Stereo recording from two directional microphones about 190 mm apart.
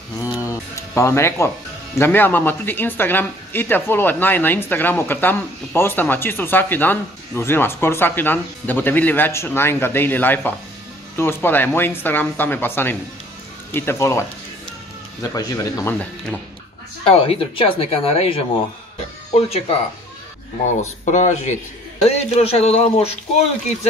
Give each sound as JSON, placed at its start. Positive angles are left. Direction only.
{"t": 0.2, "sound": "a sound", "side_deg": 15}
{"t": 2.0, "sound": "speech", "side_deg": 10}
{"t": 15.2, "sound": "speech", "side_deg": 20}
{"t": 17.0, "sound": "speech", "side_deg": 30}
{"t": 21.0, "sound": "speech", "side_deg": 40}